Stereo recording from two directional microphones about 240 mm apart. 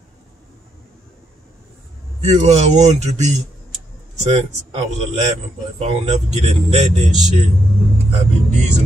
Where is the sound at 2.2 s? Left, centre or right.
Right.